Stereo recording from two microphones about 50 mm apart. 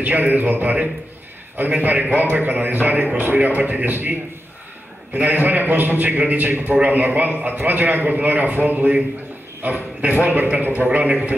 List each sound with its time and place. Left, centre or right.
0.0 s a man's voice: right
9.6 s a man's voice: right
10.5 s a man's voice: right